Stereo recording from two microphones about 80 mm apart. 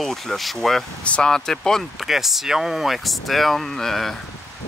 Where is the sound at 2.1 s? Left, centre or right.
Centre.